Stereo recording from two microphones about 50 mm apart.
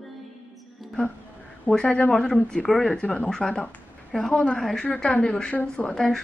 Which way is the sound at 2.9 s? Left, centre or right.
Left.